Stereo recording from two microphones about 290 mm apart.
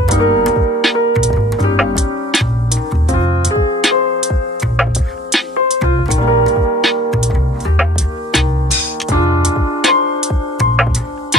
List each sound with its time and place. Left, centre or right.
0.0 s music: centre
5.3 s music: centre